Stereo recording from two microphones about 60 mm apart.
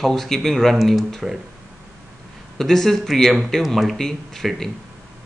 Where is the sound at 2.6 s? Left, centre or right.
Centre.